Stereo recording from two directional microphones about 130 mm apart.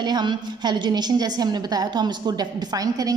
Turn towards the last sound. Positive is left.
turn(degrees=-30)  # may be behind; listen again after turning